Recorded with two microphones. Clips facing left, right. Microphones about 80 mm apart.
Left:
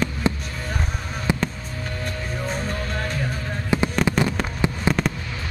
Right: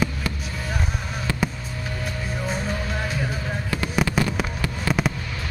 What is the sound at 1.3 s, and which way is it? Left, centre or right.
Music, centre.